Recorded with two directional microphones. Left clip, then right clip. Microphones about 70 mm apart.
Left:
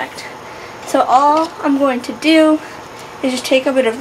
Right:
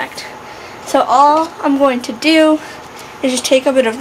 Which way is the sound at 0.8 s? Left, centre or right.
Right.